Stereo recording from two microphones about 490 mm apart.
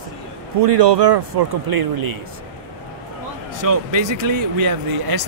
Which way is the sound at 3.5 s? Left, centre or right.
Right.